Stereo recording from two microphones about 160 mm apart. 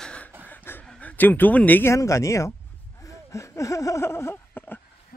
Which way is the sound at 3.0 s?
20° left (ahead or behind).